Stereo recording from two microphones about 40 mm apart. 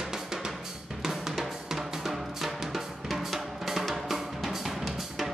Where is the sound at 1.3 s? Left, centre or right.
Centre.